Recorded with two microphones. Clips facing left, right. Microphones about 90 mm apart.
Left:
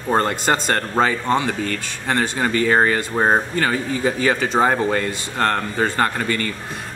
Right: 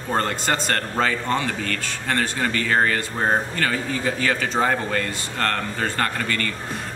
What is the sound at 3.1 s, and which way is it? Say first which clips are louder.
Speech: left 5 dB; 30° left (ahead or behind).